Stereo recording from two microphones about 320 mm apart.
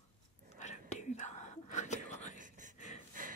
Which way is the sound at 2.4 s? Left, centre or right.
Right.